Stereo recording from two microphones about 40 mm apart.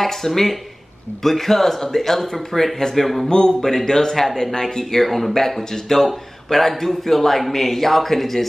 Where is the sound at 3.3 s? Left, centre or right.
Centre.